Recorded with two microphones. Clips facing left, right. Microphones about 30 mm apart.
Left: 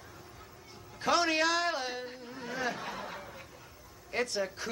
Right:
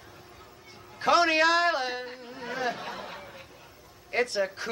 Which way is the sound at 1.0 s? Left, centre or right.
Right.